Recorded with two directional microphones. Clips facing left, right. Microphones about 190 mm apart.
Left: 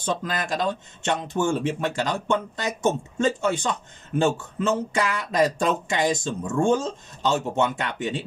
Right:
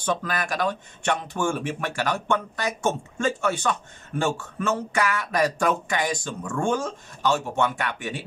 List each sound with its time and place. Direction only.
0.0 s speech: 20° left (ahead or behind)